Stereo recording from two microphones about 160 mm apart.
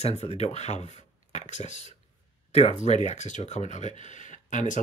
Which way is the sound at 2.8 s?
45° left (ahead or behind).